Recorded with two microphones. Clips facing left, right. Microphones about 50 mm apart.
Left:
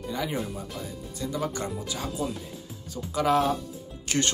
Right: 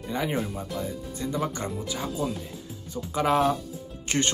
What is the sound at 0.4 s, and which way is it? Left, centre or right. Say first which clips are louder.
Speech: right 3 dB; centre.